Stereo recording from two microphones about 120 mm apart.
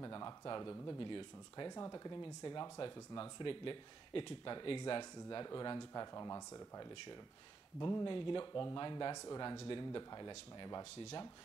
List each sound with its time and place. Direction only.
0.0 s speech: 30° left (ahead or behind)